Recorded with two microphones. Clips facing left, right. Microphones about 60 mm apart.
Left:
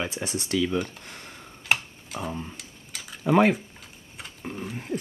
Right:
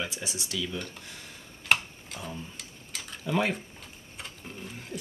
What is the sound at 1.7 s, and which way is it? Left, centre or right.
Tick-tock, centre.